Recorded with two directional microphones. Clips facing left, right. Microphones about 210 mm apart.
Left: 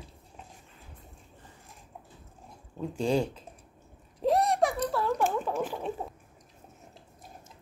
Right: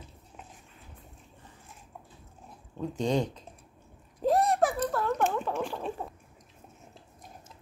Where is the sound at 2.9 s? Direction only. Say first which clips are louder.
Left 1 dB; 10° left (ahead or behind).